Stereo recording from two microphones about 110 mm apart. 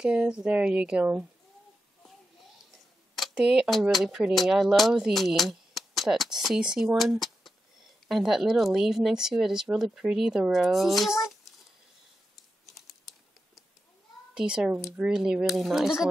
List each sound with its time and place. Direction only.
0.0 s speech: 10° right (ahead or behind)
3.3 s speech: 10° right (ahead or behind)
12.6 s typing: centre (ahead or behind)
14.3 s speech: 10° right (ahead or behind)